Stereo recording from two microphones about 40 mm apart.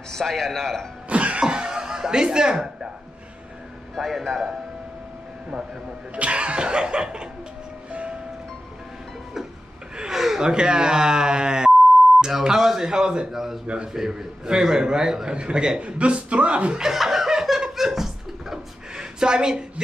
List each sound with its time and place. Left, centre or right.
0.1 s a man's voice: centre
1.0 s cough: right
1.4 s cough: centre
3.9 s speech: centre
6.1 s a sound: right
9.9 s a sound: centre
12.3 s a man's voice: centre
13.3 s a man's voice: centre
15.3 s a sound: right
15.8 s speech: right
16.8 s laughter: centre
19.1 s a sound: centre